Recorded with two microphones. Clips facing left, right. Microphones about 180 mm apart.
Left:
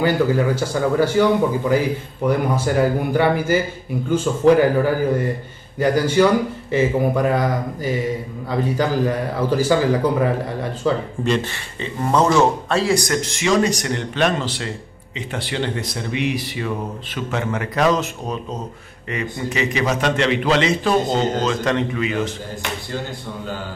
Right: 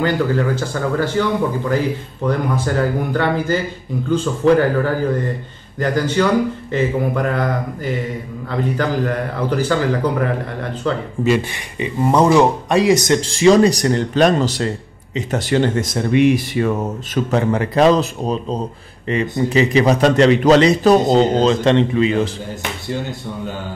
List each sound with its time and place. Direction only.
0.0 s speech: 10° left (ahead or behind)
11.2 s a man's voice: 10° right (ahead or behind); by 22.3 s 30° right (ahead or behind)